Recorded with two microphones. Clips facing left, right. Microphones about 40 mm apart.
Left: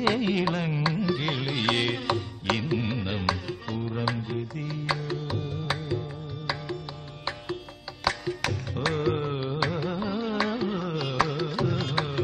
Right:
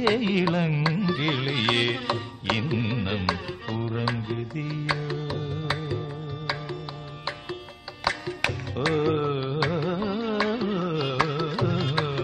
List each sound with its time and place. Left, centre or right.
0.0 s carnatic music: centre
8.4 s music: centre
10.3 s carnatic music: right